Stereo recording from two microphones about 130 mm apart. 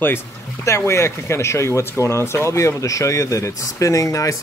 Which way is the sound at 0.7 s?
20° left (ahead or behind).